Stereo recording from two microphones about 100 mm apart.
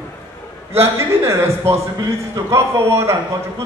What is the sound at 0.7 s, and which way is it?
A man's voice, 30° right (ahead or behind).